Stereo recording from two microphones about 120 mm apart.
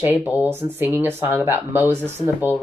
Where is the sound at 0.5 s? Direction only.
20° right (ahead or behind).